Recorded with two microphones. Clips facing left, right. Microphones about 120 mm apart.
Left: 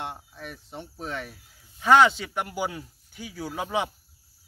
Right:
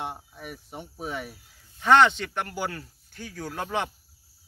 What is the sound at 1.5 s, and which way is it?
Speech, 5° left (ahead or behind).